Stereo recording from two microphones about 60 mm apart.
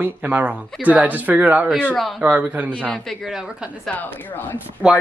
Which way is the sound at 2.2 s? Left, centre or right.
Right.